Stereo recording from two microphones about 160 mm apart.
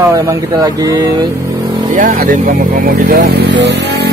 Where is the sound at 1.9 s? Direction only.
60° right (ahead or behind).